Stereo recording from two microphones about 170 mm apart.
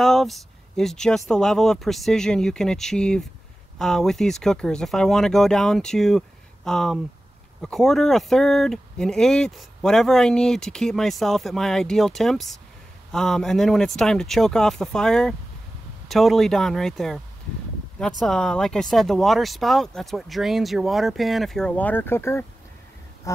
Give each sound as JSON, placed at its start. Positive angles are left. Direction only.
{"t": 0.0, "sound": "speech", "side_deg": 0}
{"t": 18.2, "sound": "speech", "side_deg": 5}
{"t": 23.3, "sound": "a sound", "side_deg": 20}